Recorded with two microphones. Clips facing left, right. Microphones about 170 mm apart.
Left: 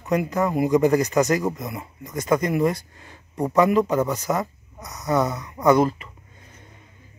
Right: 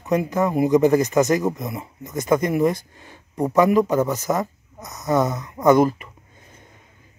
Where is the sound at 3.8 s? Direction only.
Centre (ahead or behind).